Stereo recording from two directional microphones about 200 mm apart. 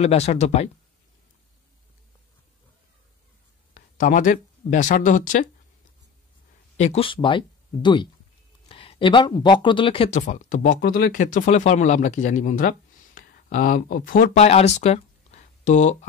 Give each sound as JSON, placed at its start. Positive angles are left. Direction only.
{"t": 0.0, "sound": "speech", "side_deg": 30}
{"t": 3.7, "sound": "speech", "side_deg": 40}
{"t": 6.8, "sound": "speech", "side_deg": 30}